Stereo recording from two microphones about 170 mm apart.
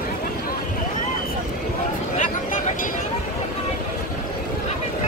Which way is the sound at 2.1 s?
50° left (ahead or behind).